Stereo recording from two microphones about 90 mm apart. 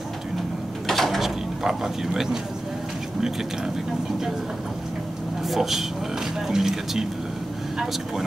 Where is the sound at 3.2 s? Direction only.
5° right (ahead or behind).